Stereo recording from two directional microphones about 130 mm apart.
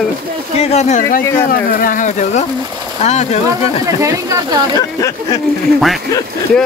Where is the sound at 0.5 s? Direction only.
55° left (ahead or behind).